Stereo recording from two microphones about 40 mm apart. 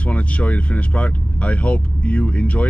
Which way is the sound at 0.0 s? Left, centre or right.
Left.